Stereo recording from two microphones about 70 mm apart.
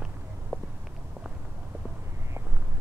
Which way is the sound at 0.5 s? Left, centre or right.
Right.